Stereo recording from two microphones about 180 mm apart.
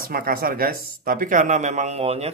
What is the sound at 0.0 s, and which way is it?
Speech, 55° right (ahead or behind).